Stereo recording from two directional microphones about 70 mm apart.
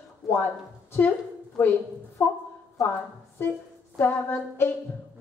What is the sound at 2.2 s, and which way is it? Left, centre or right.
Speech, left.